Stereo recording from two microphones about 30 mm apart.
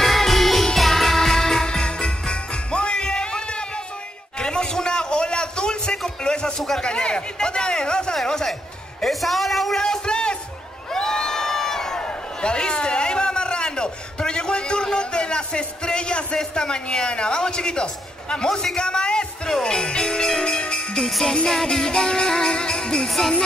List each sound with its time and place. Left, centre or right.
0.0 s music: centre
0.7 s jingle bell: centre; by 3.8 s left
4.4 s a sound: left
9.0 s a sound: centre
10.0 s music: left
10.9 s crowd: left
12.0 s a sound: left
18.8 s music: left
20.6 s jingle bell: left
21.0 s music: centre; by 23.0 s left
23.0 s music: centre